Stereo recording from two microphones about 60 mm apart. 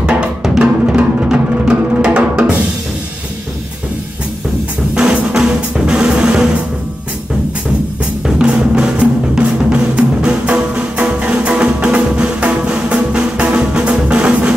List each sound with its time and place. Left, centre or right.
0.0 s music: centre
4.9 s drum: centre
8.4 s drum: centre